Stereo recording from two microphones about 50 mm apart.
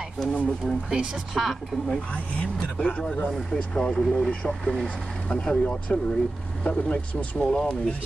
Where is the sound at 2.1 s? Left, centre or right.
Left; by 4.9 s centre.